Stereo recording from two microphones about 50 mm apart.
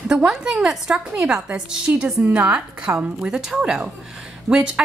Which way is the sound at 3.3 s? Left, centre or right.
Centre.